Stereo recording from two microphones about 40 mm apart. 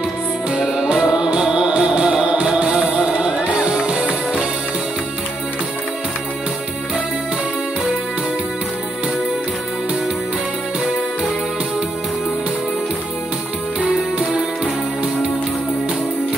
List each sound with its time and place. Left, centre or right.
0.5 s music: centre
13.7 s music: right